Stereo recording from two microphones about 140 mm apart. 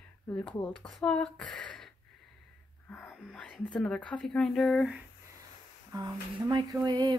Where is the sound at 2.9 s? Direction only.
5° left (ahead or behind).